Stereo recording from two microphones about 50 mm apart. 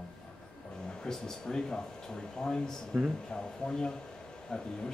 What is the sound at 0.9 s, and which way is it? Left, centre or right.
Speech, centre.